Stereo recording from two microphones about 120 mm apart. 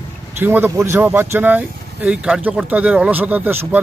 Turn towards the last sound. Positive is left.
turn(degrees=-20)  # may be behind; listen again after turning